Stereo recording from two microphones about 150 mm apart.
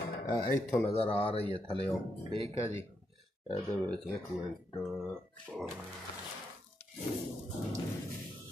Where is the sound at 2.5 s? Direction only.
20° left (ahead or behind).